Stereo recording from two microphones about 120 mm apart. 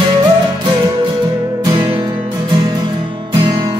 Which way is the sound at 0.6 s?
40° right (ahead or behind).